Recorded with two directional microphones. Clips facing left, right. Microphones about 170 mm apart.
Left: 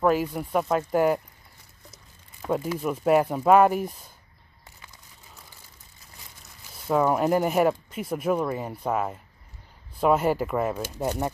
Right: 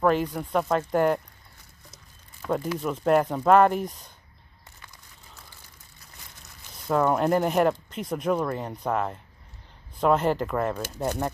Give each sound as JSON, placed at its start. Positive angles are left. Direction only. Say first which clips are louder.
{"t": 0.0, "sound": "speech", "louder": "even", "side_deg": 5}
{"t": 2.4, "sound": "speech", "louder": "left 1 dB", "side_deg": 5}
{"t": 6.9, "sound": "speech", "louder": "even", "side_deg": 5}